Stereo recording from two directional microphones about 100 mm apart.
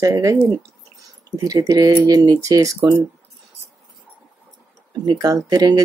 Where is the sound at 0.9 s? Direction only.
35° right (ahead or behind).